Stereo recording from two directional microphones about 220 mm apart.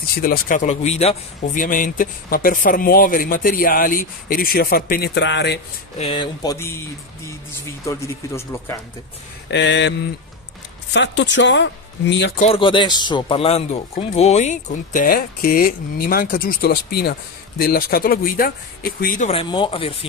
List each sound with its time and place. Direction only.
0.2 s speech: 40° left (ahead or behind)
5.9 s speech: 25° left (ahead or behind)
7.8 s speech: 15° left (ahead or behind)
9.5 s speech: 55° left (ahead or behind)
12.4 s speech: 25° left (ahead or behind)